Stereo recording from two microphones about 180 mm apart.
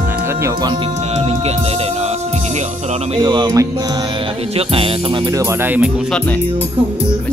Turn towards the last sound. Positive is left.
turn(degrees=-10)  # may be behind; listen again after turning